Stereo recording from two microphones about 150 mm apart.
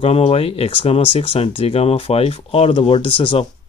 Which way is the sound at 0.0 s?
40° left (ahead or behind).